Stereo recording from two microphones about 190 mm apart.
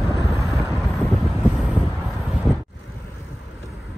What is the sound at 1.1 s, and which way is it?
Wind noise, centre (ahead or behind).